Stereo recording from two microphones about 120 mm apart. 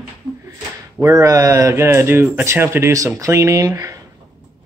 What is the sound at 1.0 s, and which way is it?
Speech, 25° right (ahead or behind).